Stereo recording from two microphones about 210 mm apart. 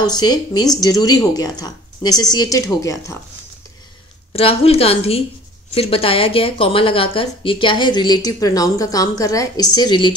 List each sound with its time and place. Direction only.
0.0 s speech: 20° left (ahead or behind)
4.3 s speech: 25° left (ahead or behind)